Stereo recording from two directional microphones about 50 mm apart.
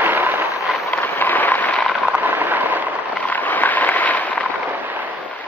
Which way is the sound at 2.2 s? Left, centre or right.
Right.